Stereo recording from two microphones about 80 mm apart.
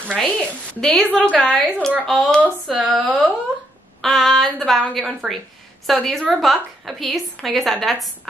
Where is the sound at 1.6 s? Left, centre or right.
Centre.